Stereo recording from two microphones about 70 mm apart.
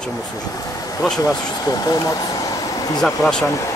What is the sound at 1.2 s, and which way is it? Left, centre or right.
Speech, left.